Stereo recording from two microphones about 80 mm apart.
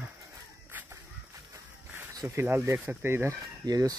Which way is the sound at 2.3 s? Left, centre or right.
Right.